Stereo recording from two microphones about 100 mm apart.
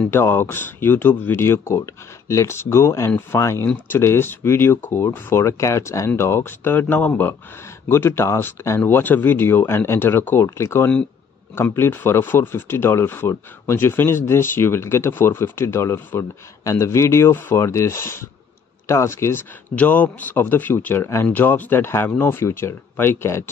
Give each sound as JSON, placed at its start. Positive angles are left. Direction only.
{"t": 0.1, "sound": "speech", "side_deg": 25}
{"t": 19.7, "sound": "speech", "side_deg": 15}